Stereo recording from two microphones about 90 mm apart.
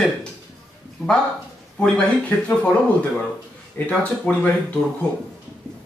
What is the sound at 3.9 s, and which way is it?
Speech, 10° left (ahead or behind).